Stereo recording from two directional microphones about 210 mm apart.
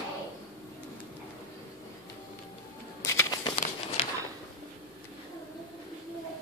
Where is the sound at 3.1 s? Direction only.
20° left (ahead or behind).